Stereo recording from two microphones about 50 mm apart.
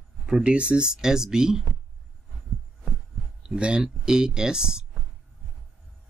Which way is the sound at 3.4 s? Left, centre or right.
Centre.